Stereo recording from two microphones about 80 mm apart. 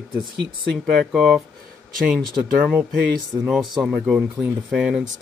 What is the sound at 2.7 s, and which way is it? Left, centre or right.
Speech, centre.